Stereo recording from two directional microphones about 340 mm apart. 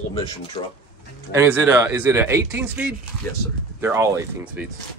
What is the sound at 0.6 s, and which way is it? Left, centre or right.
Speech, centre.